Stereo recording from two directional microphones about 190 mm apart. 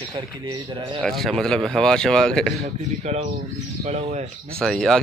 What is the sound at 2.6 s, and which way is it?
A man's voice, 35° right (ahead or behind).